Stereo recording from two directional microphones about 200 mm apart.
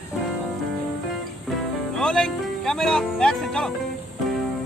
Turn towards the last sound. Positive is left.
turn(degrees=5)  # may be behind; listen again after turning